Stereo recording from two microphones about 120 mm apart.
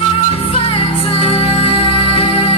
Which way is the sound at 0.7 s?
55° left (ahead or behind).